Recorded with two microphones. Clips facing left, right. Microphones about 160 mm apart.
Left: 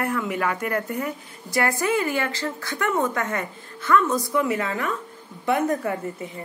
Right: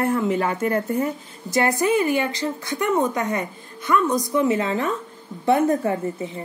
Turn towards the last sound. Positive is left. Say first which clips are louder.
# right 4 dB
turn(degrees=-25)  # may be behind; listen again after turning